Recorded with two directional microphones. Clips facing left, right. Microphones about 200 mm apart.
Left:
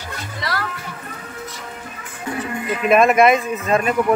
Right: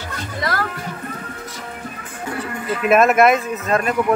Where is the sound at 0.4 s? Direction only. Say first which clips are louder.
Right 3 dB; 50° right (ahead or behind).